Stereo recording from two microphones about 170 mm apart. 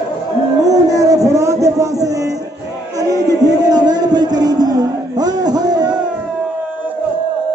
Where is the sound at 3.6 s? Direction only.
25° right (ahead or behind).